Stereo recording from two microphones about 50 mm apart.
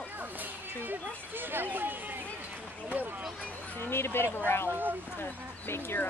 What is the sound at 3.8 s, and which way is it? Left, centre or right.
Speech, left.